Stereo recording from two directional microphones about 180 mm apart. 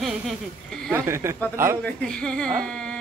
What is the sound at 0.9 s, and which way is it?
Speech, 15° right (ahead or behind).